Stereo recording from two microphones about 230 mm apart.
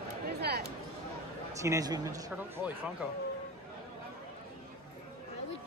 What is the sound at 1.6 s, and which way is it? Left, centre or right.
Speech, centre.